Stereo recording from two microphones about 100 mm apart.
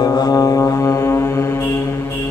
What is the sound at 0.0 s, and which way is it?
Music, 40° left (ahead or behind).